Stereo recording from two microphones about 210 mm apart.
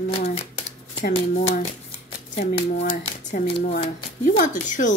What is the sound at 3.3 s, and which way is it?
Speech, 35° left (ahead or behind).